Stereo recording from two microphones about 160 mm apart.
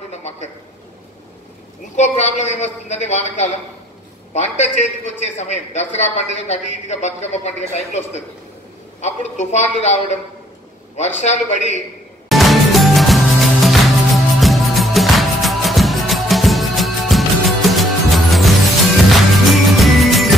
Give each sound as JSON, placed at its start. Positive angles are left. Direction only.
{"t": 0.1, "sound": "a sound", "side_deg": 45}
{"t": 2.0, "sound": "a man's voice", "side_deg": 45}
{"t": 12.3, "sound": "music", "side_deg": 0}